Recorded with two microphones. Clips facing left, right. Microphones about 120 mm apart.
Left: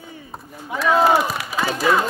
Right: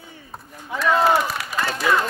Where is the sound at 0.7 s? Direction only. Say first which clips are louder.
Left 2 dB; centre (ahead or behind).